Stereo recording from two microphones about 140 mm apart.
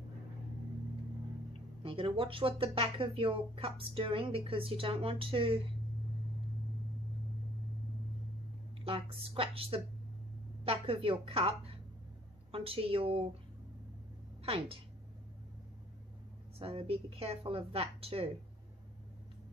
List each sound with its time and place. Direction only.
1.8 s speech: 40° right (ahead or behind)
8.8 s a woman's voice: 40° right (ahead or behind)
14.4 s a woman's voice: 45° right (ahead or behind)
16.5 s a woman's voice: 40° right (ahead or behind)